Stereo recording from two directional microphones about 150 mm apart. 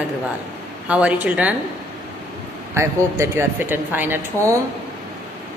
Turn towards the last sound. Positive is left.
turn(degrees=-15)  # may be behind; listen again after turning